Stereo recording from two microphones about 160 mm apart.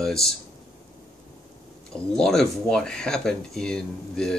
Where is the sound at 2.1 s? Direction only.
5° left (ahead or behind).